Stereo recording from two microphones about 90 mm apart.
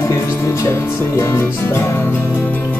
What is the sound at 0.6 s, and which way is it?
Music, 30° left (ahead or behind).